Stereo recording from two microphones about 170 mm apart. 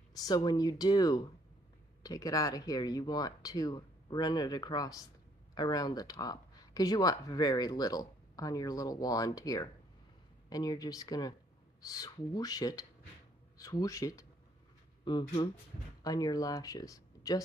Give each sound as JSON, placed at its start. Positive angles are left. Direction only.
{"t": 0.1, "sound": "speech", "side_deg": 20}